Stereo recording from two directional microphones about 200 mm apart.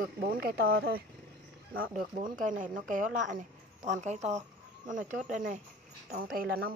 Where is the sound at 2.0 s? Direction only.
40° right (ahead or behind).